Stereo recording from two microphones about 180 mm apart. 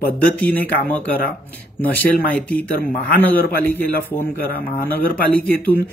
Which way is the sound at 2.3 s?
10° left (ahead or behind).